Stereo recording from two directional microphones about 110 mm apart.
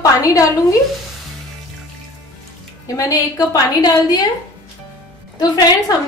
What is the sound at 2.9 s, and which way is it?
A woman's voice, 30° left (ahead or behind).